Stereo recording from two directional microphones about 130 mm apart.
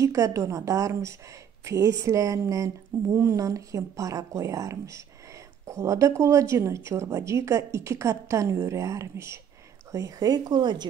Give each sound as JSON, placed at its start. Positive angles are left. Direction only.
{"t": 0.0, "sound": "a woman's voice", "side_deg": -25}